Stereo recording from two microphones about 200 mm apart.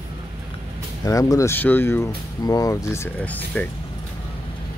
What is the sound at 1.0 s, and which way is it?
Speech, 15° left (ahead or behind).